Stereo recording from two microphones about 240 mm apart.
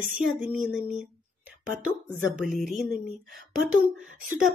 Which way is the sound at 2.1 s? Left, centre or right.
Centre.